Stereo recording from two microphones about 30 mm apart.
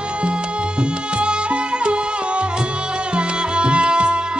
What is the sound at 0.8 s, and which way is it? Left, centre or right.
Music, right.